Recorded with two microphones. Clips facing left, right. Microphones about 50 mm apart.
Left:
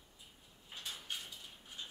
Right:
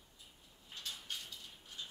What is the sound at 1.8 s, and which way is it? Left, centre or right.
Ratchet, left.